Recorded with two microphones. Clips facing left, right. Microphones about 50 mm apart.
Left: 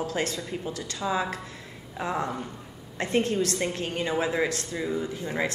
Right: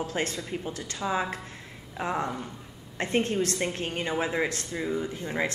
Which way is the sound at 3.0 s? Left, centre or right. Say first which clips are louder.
Left 1 dB; right.